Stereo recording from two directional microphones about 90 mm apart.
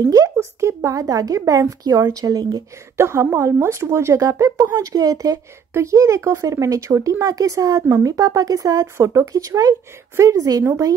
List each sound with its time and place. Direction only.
0.0 s speech: 40° right (ahead or behind)
3.0 s speech: 30° right (ahead or behind)